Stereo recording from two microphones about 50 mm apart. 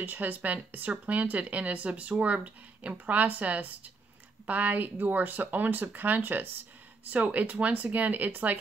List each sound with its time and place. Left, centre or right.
0.0 s speech: right